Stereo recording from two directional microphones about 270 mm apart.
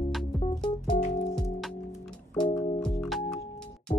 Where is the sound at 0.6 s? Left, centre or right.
Left.